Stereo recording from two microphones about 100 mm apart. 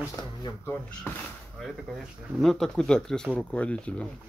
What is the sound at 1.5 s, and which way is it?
Speech, centre (ahead or behind).